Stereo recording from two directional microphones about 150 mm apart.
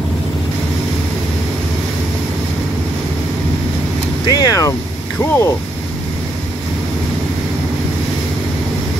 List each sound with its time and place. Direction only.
4.3 s vehicle: 25° left (ahead or behind)
5.2 s speech: 20° left (ahead or behind)